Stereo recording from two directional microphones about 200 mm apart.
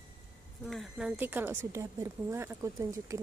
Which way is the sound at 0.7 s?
Centre (ahead or behind).